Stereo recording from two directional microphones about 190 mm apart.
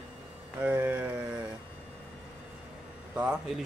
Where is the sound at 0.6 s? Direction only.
10° right (ahead or behind).